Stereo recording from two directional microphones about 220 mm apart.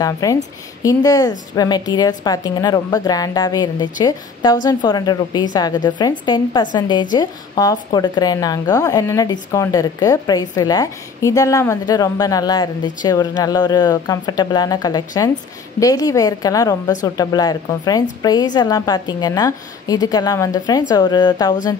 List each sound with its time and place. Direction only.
0.0 s a woman's voice: 15° left (ahead or behind)